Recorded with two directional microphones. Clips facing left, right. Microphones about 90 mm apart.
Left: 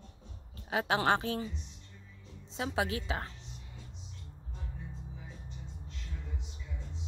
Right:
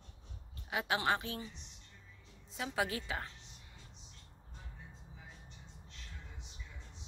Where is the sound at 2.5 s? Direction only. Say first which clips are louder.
Left 3 dB; 25° left (ahead or behind).